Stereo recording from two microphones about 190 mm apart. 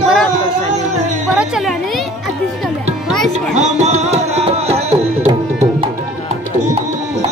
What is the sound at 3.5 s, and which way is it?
Music, 40° right (ahead or behind).